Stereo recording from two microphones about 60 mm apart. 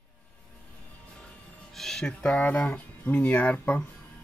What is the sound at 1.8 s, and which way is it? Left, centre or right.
Speech, centre.